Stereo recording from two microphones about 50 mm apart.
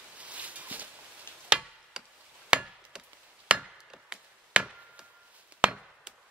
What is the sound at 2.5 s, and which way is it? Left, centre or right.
Wood, centre.